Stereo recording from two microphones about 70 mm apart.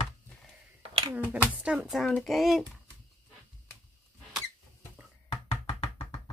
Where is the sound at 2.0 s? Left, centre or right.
Centre.